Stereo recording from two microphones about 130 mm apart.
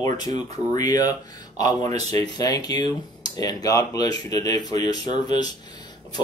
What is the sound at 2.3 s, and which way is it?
Speech, 30° left (ahead or behind).